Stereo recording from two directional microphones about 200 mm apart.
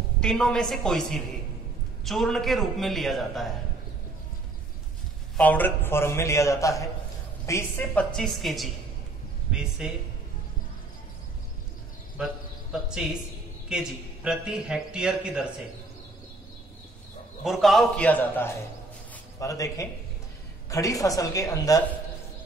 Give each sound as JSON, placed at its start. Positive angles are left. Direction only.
{"t": 0.2, "sound": "a man's voice", "side_deg": 5}
{"t": 5.4, "sound": "a man's voice", "side_deg": 10}
{"t": 12.7, "sound": "a man's voice", "side_deg": -5}
{"t": 17.4, "sound": "a man's voice", "side_deg": 0}